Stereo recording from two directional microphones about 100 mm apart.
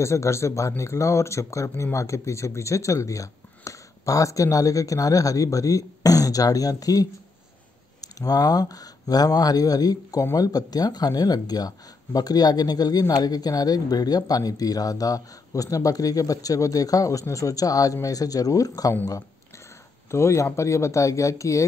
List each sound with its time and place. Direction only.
0.0 s speech: 30° left (ahead or behind)
20.1 s speech: 30° left (ahead or behind)